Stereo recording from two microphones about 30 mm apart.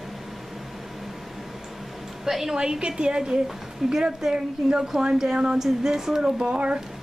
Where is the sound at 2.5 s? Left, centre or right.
Right.